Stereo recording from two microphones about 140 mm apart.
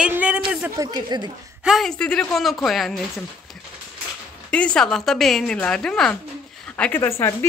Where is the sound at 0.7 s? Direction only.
30° right (ahead or behind).